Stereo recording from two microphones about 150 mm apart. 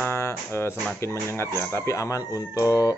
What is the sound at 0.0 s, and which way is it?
Music, 15° left (ahead or behind).